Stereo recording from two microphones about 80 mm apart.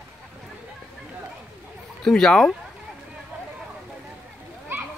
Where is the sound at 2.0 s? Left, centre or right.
Centre.